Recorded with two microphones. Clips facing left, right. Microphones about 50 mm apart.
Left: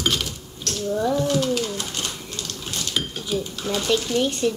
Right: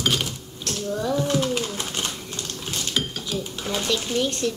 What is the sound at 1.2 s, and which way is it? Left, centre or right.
Speech, right.